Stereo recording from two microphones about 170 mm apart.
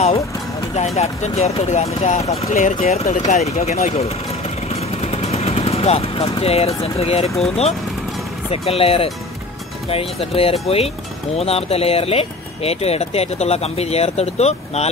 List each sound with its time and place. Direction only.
0.7 s speech: 40° left (ahead or behind)
4.6 s vehicle: 35° left (ahead or behind)
7.2 s speech: centre (ahead or behind)
8.5 s speech: 35° left (ahead or behind)